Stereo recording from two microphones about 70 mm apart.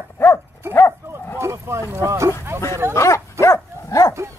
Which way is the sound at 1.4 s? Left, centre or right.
Right.